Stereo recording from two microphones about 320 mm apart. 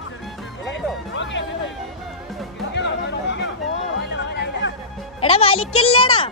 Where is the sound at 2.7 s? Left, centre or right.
Left.